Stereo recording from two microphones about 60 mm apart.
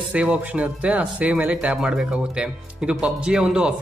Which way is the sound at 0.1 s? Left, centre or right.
Right.